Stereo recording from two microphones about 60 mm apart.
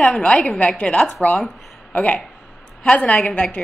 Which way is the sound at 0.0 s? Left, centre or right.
Centre.